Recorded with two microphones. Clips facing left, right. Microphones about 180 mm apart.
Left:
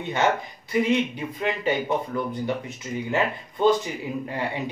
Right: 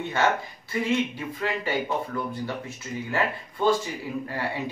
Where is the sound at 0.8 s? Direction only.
20° left (ahead or behind).